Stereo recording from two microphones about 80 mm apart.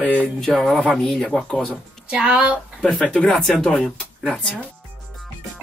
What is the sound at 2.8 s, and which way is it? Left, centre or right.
Speech, centre.